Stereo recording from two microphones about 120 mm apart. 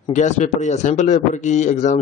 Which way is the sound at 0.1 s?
75° left (ahead or behind).